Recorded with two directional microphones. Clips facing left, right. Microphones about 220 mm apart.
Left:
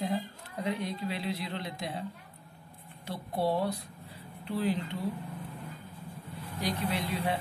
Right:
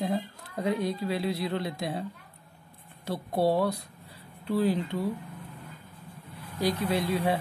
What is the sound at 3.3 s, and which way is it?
Speech, 40° right (ahead or behind).